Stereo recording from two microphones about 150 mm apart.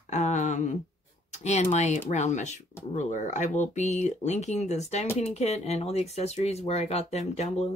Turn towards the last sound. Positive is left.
turn(degrees=45)  # may be behind; listen again after turning